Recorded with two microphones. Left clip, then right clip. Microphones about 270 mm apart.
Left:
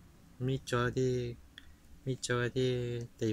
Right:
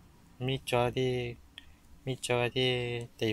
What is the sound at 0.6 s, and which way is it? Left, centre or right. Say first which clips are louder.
Speech: right 5 dB; left.